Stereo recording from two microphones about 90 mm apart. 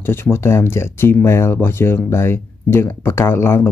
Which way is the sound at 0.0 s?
25° left (ahead or behind).